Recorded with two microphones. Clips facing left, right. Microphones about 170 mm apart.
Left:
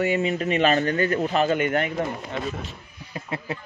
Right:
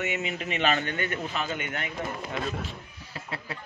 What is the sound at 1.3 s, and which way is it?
Speech, 55° left (ahead or behind).